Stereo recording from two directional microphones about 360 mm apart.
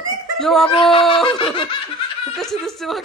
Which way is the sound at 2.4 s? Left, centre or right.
Centre.